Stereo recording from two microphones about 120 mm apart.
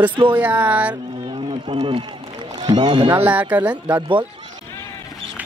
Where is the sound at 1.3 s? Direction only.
50° right (ahead or behind).